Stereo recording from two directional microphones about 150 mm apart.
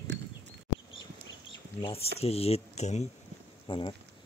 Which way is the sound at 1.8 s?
40° left (ahead or behind).